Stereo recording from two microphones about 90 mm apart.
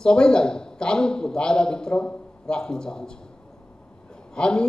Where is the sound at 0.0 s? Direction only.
10° left (ahead or behind).